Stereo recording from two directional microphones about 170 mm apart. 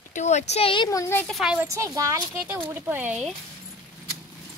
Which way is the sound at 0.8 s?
15° left (ahead or behind).